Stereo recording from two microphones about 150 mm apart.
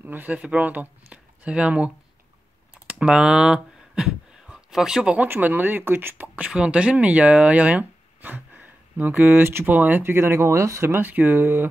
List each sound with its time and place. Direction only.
0.0 s speech: 10° right (ahead or behind)
2.9 s speech: 5° right (ahead or behind)